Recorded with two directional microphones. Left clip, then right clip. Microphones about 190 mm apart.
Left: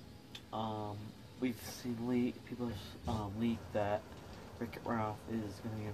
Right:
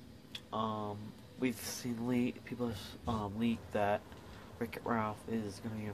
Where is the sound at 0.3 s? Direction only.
45° right (ahead or behind).